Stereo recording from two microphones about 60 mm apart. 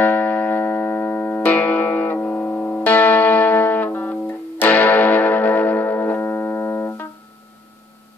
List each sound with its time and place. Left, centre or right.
0.0 s music: left